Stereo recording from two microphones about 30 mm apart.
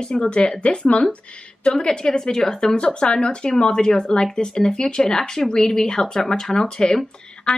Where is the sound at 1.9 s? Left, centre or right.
Left.